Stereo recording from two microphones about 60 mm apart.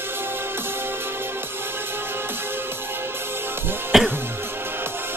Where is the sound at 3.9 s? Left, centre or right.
Centre.